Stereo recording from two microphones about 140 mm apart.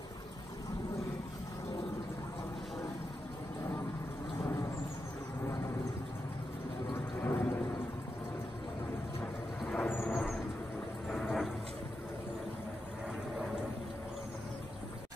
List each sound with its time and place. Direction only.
7.2 s a sound: 15° left (ahead or behind)
9.2 s vehicle: 10° left (ahead or behind)
11.1 s wild animals: centre (ahead or behind)